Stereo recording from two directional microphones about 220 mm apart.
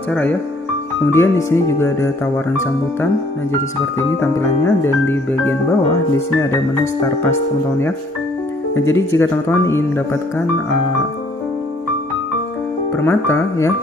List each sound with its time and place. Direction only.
0.1 s speech: 5° left (ahead or behind)
4.2 s speech: 10° left (ahead or behind)
8.8 s speech: 10° left (ahead or behind)
12.9 s speech: 10° left (ahead or behind)